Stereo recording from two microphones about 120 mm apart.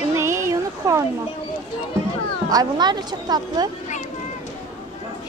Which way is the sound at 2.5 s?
35° right (ahead or behind).